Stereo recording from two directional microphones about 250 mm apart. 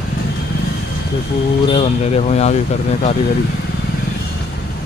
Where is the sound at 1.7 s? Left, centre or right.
Left.